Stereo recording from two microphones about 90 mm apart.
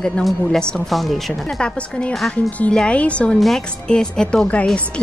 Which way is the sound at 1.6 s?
10° left (ahead or behind).